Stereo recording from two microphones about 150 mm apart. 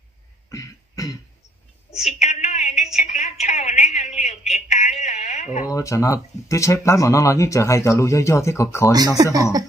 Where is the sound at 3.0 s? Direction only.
50° left (ahead or behind).